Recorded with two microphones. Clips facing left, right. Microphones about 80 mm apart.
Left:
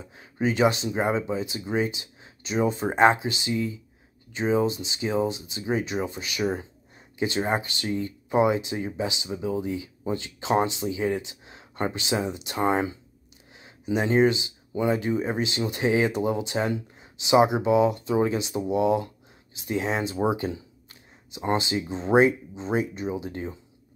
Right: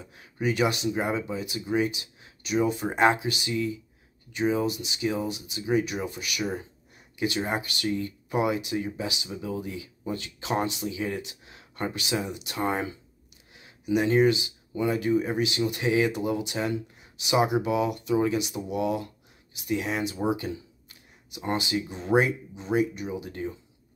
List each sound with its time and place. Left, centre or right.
0.0 s speech: left